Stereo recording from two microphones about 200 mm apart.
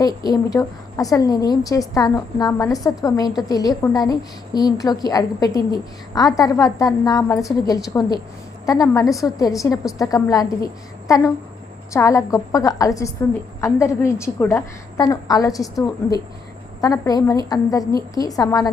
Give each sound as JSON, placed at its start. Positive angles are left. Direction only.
{"t": 0.0, "sound": "a woman's voice", "side_deg": 20}
{"t": 16.8, "sound": "a woman's voice", "side_deg": 20}